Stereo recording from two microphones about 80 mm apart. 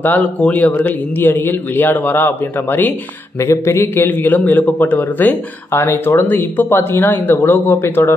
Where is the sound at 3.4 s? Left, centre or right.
Left.